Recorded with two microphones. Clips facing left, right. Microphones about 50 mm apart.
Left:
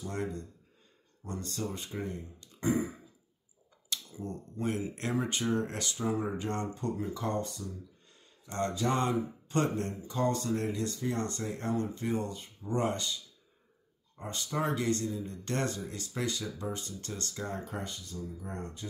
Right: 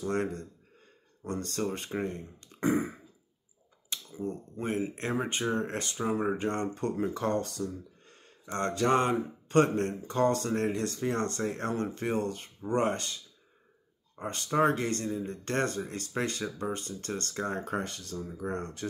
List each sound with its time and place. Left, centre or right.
0.0 s speech: right
3.9 s speech: right
14.2 s speech: right
18.5 s speech: right